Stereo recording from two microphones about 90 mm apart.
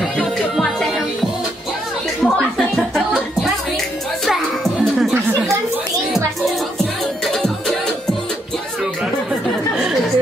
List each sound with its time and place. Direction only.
0.6 s music: centre (ahead or behind)
2.2 s music: centre (ahead or behind)
7.2 s music: centre (ahead or behind)